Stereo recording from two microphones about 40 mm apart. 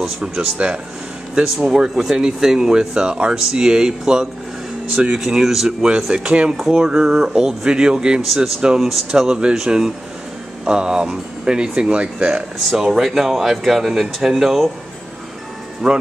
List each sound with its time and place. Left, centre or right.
0.2 s speech: right
6.9 s speech: centre
12.6 s speech: centre
15.8 s speech: centre